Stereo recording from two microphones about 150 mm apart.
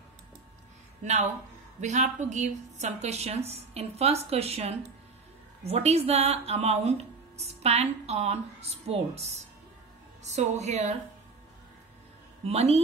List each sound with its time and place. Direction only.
1.0 s speech: 50° right (ahead or behind)
12.4 s speech: 45° right (ahead or behind)